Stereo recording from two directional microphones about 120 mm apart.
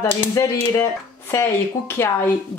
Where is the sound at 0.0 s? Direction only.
20° left (ahead or behind).